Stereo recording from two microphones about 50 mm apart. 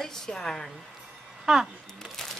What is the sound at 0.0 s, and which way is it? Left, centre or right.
Speech, centre.